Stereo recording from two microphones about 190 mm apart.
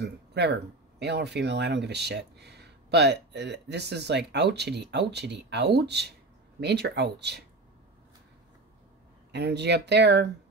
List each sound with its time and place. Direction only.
0.0 s speech: 65° right (ahead or behind)
9.3 s speech: 60° right (ahead or behind)